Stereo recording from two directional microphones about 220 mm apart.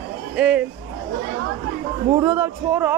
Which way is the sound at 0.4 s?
5° right (ahead or behind).